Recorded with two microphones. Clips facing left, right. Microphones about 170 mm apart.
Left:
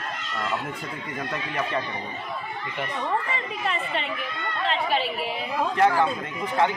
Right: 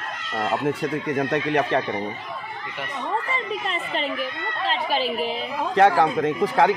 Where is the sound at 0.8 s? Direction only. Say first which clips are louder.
Right 9 dB; 80° right.